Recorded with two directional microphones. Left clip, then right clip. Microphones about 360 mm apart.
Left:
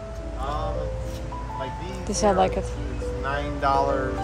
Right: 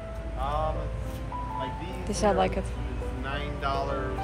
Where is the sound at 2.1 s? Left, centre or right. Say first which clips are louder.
Left 4 dB; centre.